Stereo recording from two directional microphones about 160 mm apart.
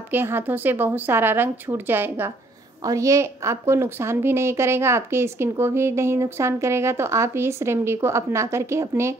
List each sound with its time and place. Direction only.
0.1 s a woman's voice: 15° right (ahead or behind)